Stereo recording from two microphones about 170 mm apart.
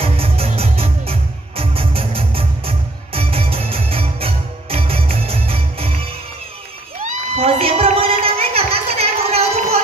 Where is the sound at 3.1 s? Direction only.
35° right (ahead or behind).